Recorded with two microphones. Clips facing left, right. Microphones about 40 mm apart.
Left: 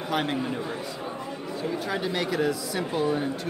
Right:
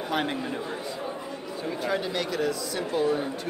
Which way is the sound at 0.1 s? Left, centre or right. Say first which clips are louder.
Left 1 dB; centre.